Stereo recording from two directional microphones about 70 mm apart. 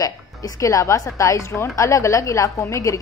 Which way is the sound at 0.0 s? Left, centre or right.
Left.